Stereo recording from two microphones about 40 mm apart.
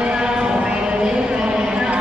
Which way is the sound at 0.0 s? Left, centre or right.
Right.